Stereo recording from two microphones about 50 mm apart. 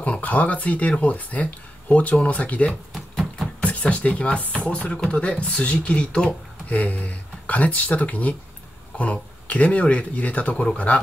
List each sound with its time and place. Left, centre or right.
0.2 s speech: left